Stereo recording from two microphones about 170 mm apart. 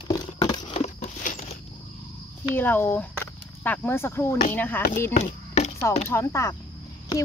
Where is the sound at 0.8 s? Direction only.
45° left (ahead or behind).